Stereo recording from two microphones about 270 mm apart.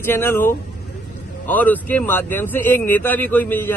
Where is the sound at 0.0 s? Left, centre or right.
Centre.